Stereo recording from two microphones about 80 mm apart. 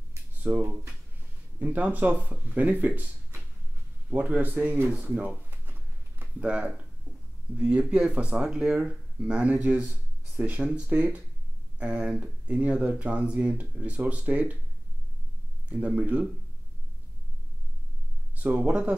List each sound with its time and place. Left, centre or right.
0.4 s speech: right
4.1 s speech: centre
5.5 s a sound: right
7.5 s speech: centre
15.7 s speech: centre
18.4 s speech: centre